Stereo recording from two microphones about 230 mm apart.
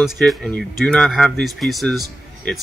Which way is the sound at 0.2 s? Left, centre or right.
Centre.